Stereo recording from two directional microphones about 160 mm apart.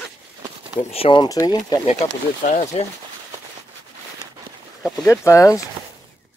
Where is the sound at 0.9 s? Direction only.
35° left (ahead or behind).